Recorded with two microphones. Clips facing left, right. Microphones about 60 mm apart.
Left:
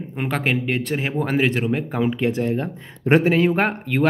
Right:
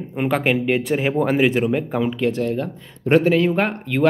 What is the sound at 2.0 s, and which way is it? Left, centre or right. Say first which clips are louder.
Speech: even; centre.